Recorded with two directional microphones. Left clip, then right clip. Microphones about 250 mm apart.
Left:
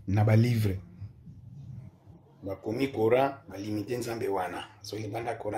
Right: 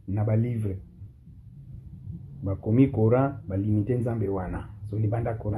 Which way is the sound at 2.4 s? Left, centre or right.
Centre.